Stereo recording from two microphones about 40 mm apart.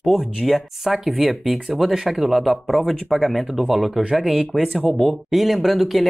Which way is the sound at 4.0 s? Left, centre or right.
Right.